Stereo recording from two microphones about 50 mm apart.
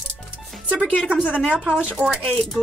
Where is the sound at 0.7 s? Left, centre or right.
Left.